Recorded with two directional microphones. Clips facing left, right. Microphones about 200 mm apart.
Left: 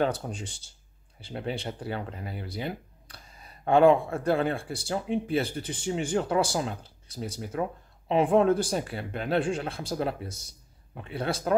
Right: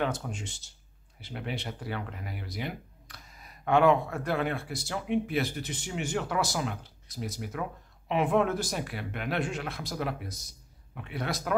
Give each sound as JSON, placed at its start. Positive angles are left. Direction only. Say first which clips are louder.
{"t": 0.0, "sound": "speech", "louder": "left 4 dB", "side_deg": 35}